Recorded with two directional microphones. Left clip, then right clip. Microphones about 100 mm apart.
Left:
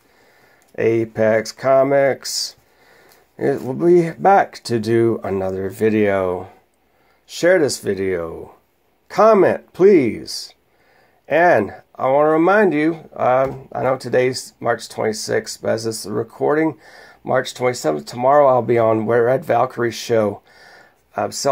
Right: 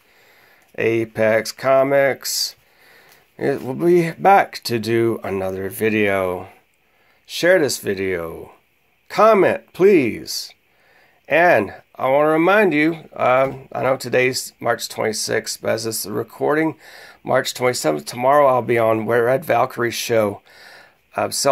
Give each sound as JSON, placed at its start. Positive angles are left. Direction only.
{"t": 0.7, "sound": "speech", "side_deg": -5}
{"t": 18.3, "sound": "speech", "side_deg": 0}
{"t": 20.3, "sound": "a sound", "side_deg": -20}